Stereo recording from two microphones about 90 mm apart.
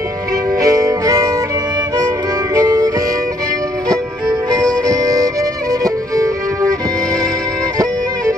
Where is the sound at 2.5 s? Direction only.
45° right (ahead or behind).